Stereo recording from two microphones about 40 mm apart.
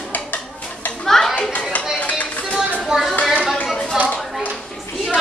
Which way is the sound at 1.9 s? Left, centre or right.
Left.